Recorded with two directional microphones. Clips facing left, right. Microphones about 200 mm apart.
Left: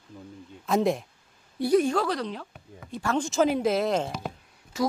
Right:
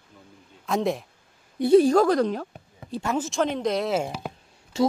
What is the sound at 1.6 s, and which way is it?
Speech, 25° right (ahead or behind).